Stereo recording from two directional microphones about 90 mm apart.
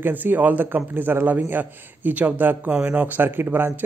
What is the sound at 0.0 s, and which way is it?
A man's voice, 20° right (ahead or behind).